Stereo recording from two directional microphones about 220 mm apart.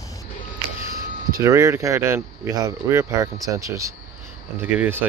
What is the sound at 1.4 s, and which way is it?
Speech, 15° right (ahead or behind).